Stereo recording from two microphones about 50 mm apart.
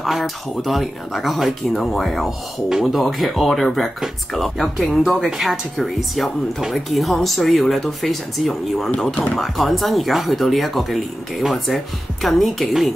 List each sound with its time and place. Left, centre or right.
0.0 s speech: centre